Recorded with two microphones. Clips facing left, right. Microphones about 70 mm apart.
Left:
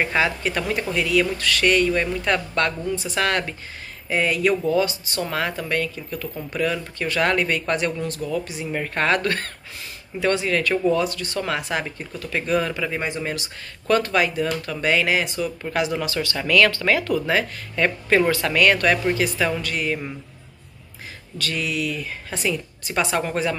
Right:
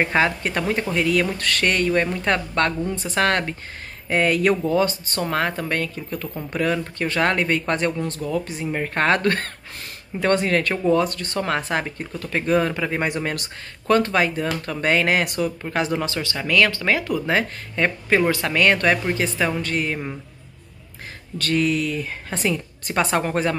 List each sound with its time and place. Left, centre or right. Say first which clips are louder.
0.0 s speech: right 2 dB; right
4.1 s speech: right 2 dB; right
13.0 s speech: right 2 dB; right
13.9 s speech: right 1 dB; right
15.7 s speech: even; right
19.6 s speech: right 1 dB; right
21.4 s speech: right 5 dB; right